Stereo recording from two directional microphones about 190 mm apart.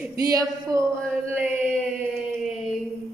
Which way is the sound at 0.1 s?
20° right (ahead or behind).